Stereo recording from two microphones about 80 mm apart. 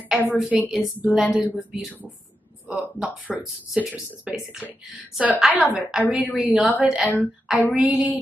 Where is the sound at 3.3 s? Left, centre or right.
Centre.